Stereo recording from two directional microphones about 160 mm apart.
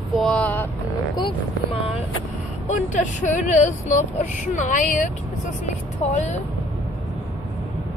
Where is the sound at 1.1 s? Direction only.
35° left (ahead or behind).